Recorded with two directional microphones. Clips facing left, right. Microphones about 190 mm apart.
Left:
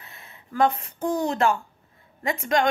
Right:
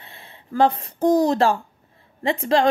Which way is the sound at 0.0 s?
30° right (ahead or behind).